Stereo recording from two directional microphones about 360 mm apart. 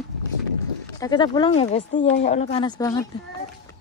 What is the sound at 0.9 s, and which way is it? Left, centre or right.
Speech, centre.